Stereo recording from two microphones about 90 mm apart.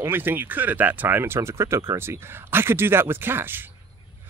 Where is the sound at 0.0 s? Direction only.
25° right (ahead or behind).